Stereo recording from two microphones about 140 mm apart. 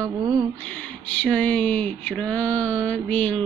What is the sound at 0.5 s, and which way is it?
Speech, 10° left (ahead or behind).